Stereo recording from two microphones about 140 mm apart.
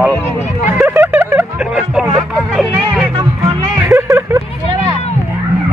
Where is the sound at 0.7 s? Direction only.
15° right (ahead or behind).